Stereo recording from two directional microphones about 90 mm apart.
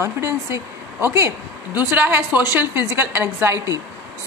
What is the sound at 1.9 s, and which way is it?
Speech, 20° right (ahead or behind).